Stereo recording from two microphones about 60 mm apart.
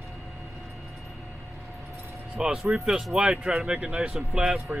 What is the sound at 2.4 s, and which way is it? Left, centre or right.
Speech, centre.